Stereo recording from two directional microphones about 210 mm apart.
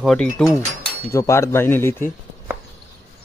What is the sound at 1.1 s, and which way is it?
Speech, 15° left (ahead or behind).